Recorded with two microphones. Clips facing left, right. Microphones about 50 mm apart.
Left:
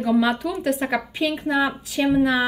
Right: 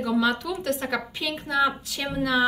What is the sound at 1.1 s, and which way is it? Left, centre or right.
Speech, left.